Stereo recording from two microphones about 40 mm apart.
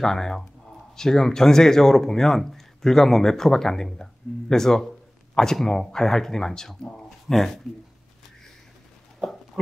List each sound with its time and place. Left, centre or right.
0.0 s speech: centre